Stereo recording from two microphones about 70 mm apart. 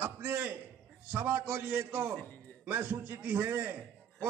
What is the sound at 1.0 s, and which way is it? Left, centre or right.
A man's voice, right.